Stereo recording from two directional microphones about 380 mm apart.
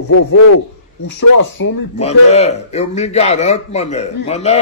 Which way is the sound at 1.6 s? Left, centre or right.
Left.